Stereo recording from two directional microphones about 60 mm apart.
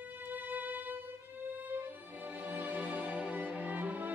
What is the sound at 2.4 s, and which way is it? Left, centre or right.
Music, right.